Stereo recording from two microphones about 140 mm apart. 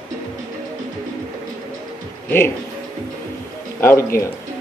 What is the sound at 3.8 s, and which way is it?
Speech, 20° left (ahead or behind).